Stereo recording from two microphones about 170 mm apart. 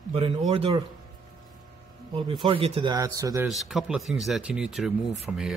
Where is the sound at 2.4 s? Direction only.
35° right (ahead or behind).